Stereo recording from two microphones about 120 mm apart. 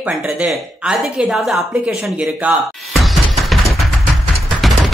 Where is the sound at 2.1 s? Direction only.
10° right (ahead or behind).